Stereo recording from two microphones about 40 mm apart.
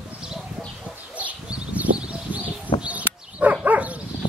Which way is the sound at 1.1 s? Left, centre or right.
Right.